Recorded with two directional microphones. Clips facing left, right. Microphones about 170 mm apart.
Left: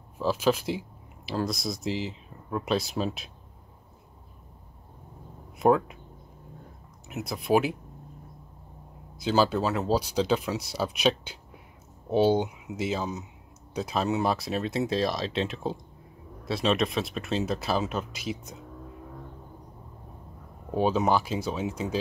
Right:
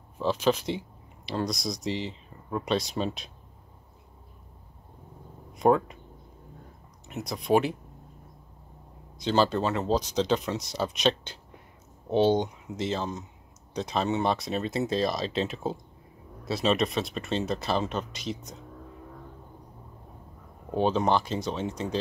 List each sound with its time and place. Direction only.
0.2 s speech: 5° left (ahead or behind)
5.6 s speech: 5° left (ahead or behind)
7.1 s speech: 5° left (ahead or behind)
9.1 s speech: 5° left (ahead or behind)
20.7 s speech: 5° left (ahead or behind)